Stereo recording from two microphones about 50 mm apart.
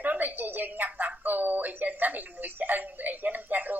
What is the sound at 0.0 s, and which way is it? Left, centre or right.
A woman's voice, right.